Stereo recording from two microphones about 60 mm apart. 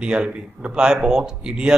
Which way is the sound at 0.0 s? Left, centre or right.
Centre.